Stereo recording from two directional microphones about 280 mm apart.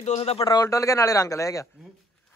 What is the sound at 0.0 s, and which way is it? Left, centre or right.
A man's voice, left.